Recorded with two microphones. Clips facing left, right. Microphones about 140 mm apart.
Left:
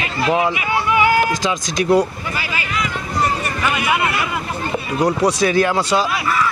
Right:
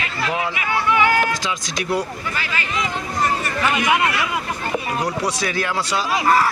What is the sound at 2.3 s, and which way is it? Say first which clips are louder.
Speech: left 1 dB; 10° left (ahead or behind).